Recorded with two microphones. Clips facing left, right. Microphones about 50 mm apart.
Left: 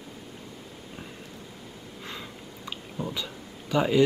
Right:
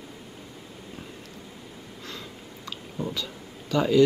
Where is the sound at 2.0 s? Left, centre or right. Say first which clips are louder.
Left 1 dB; centre.